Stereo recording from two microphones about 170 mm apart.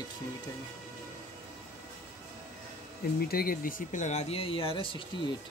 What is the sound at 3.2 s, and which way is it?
Speech, 60° left (ahead or behind).